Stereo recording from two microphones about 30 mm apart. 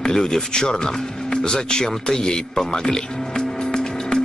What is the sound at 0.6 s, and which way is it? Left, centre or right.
Speech, left.